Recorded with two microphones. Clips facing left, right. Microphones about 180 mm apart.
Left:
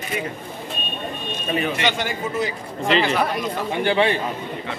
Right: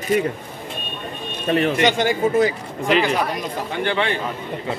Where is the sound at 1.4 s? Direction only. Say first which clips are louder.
Right 5 dB; 65° right (ahead or behind).